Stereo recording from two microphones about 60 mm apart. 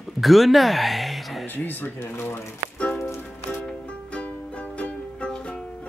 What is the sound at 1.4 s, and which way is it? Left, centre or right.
Speech, left.